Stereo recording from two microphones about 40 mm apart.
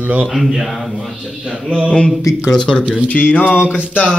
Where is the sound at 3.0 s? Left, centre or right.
Left.